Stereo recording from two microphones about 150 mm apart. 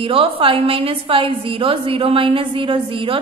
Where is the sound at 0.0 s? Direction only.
40° right (ahead or behind).